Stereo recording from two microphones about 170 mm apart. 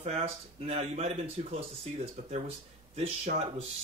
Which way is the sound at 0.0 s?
40° right (ahead or behind).